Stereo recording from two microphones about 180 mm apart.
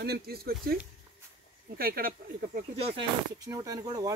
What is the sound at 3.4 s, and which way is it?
Speech, 20° right (ahead or behind).